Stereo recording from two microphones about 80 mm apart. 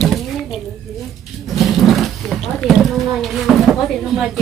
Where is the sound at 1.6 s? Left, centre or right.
Centre.